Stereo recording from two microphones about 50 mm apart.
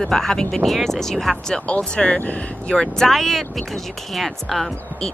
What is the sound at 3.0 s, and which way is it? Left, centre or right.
A woman's voice, centre.